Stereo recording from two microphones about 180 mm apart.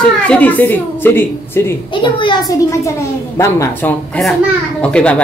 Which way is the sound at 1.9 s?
25° left (ahead or behind).